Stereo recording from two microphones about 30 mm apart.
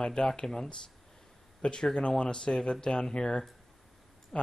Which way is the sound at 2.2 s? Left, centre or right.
Left.